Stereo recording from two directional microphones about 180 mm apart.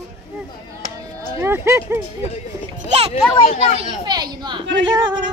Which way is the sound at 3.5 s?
45° left (ahead or behind).